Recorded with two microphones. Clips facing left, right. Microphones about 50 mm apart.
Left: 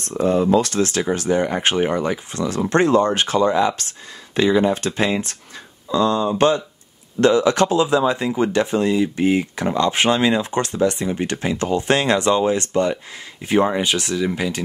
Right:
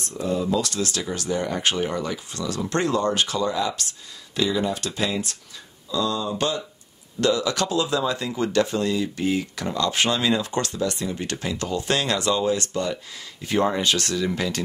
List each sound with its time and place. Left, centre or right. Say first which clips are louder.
0.1 s speech: left 8 dB; left; by 14.6 s centre